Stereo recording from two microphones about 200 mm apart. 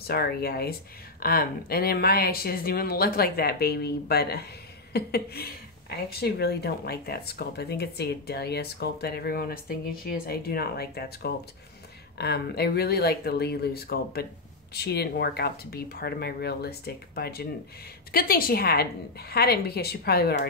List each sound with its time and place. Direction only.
0.0 s a woman's voice: 50° left (ahead or behind)